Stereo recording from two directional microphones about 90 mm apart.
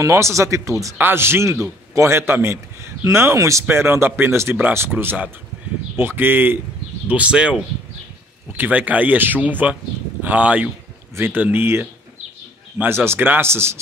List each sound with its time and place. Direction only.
0.0 s speech: 35° right (ahead or behind)
0.9 s a man's voice: 25° right (ahead or behind)